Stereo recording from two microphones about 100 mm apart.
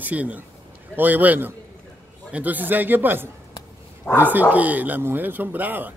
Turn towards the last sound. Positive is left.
turn(degrees=-20)  # may be behind; listen again after turning